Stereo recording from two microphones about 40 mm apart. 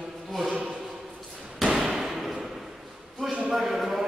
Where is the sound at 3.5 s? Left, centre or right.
Centre.